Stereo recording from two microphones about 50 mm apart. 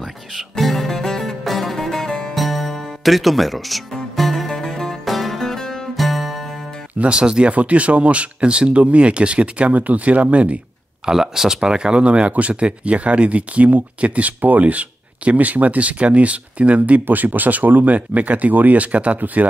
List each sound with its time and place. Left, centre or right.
0.4 s music: centre
2.3 s music: centre
5.9 s music: centre
7.0 s speech: centre
11.1 s speech: centre; by 17.0 s right
17.0 s speech: right